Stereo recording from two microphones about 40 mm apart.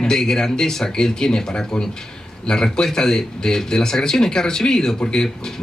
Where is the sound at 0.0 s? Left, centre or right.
Centre.